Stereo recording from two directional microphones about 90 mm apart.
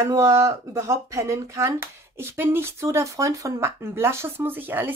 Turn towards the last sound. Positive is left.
turn(degrees=-20)  # may be behind; listen again after turning